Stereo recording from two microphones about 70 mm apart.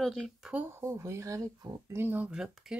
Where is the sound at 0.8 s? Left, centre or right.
Right.